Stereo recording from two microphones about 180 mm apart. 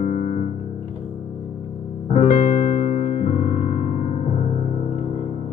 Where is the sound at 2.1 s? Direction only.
45° left (ahead or behind).